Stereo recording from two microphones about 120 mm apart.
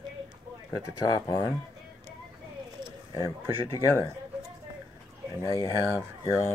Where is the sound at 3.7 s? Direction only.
30° left (ahead or behind).